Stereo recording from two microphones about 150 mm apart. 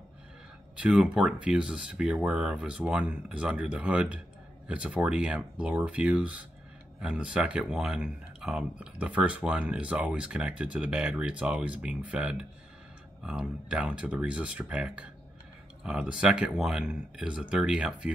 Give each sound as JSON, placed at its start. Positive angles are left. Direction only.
{"t": 0.7, "sound": "speech", "side_deg": -5}